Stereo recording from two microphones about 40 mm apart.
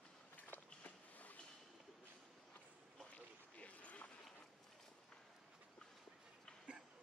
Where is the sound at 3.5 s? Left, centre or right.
Left.